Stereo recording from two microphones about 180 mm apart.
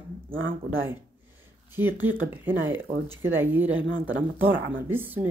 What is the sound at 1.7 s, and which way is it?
Speech, 10° right (ahead or behind).